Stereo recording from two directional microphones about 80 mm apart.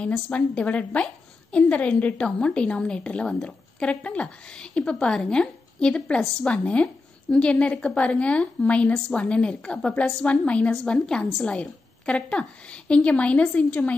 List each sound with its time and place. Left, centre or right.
0.0 s a woman's voice: centre